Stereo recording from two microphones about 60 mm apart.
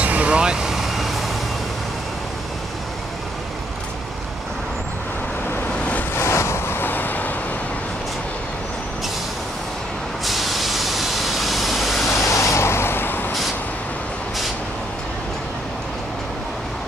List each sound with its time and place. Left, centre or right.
0.0 s vehicle: right; by 1.1 s centre
6.1 s vehicle: left
10.2 s vehicle: centre
12.3 s vehicle: left